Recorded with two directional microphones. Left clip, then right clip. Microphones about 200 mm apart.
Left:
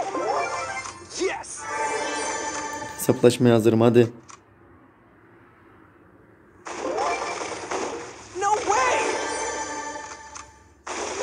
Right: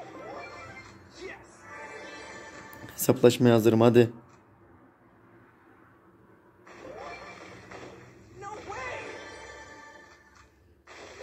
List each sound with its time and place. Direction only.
0.0 s music: 40° left (ahead or behind)
3.1 s speech: centre (ahead or behind)
6.6 s a sound: 40° left (ahead or behind)